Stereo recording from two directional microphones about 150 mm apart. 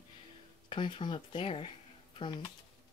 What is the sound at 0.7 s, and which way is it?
Speech, 35° left (ahead or behind).